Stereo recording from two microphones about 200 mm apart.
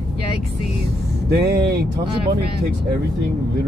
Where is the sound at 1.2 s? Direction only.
55° right (ahead or behind).